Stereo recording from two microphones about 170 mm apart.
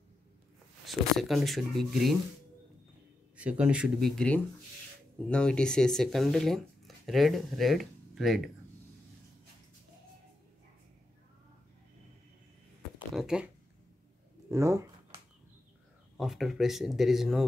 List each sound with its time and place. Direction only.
0.8 s speech: centre (ahead or behind)
3.3 s speech: 5° right (ahead or behind)
13.1 s speech: 5° right (ahead or behind)
14.5 s speech: 15° right (ahead or behind)
16.2 s speech: centre (ahead or behind)